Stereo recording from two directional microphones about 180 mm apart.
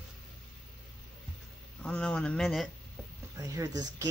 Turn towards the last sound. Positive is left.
turn(degrees=-20)  # may be behind; listen again after turning